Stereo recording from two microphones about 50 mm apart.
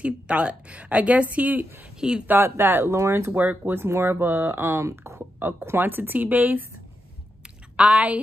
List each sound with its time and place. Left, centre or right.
0.0 s a woman's voice: right
2.0 s speech: centre
2.4 s speech: right
3.3 s speech: right
4.6 s speech: right
5.4 s speech: right
7.7 s a woman's voice: right